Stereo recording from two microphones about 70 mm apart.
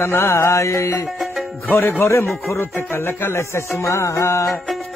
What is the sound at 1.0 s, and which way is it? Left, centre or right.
Music, centre.